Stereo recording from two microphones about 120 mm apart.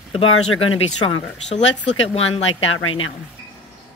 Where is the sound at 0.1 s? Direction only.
55° left (ahead or behind).